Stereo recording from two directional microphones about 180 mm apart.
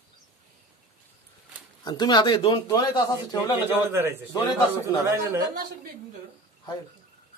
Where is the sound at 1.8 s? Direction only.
25° left (ahead or behind).